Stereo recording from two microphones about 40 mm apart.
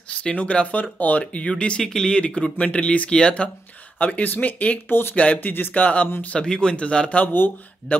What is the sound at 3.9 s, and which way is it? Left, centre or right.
Speech, left.